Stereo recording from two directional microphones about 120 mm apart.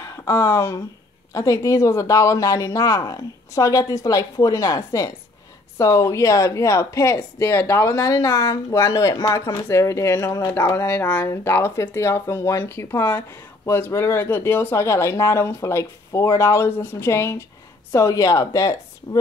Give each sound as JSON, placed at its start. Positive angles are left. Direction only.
{"t": 0.0, "sound": "speech", "side_deg": 25}